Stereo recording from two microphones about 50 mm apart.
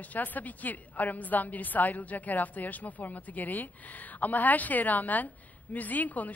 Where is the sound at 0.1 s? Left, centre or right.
Left.